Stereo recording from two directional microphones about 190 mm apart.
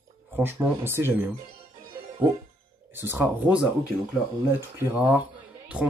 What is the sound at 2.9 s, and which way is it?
Speech, 10° right (ahead or behind).